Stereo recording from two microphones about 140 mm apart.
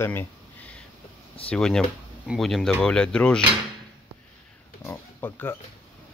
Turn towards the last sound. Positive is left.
turn(degrees=15)  # may be behind; listen again after turning